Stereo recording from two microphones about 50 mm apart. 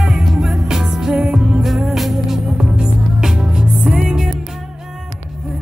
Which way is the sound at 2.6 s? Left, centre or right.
Centre.